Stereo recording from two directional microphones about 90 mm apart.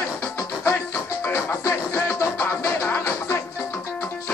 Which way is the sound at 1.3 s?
30° left (ahead or behind).